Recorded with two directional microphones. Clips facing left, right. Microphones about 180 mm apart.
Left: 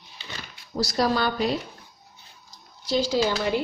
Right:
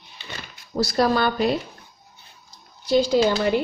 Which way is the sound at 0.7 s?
55° right (ahead or behind).